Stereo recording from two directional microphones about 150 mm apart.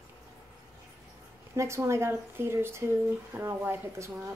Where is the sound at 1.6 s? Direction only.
20° right (ahead or behind).